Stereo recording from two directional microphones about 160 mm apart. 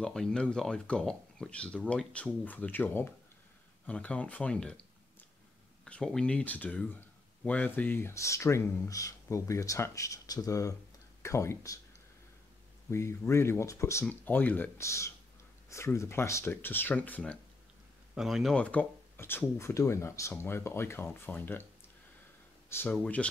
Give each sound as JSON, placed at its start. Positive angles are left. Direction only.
{"t": 0.0, "sound": "speech", "side_deg": 5}
{"t": 5.9, "sound": "speech", "side_deg": 5}
{"t": 12.9, "sound": "speech", "side_deg": 15}
{"t": 18.1, "sound": "speech", "side_deg": 0}
{"t": 22.7, "sound": "speech", "side_deg": 15}